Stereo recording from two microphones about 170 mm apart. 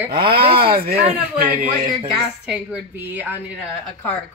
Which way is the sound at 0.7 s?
65° right (ahead or behind).